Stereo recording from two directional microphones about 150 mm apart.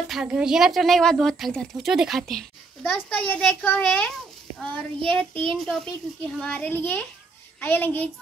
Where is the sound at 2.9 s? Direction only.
15° left (ahead or behind).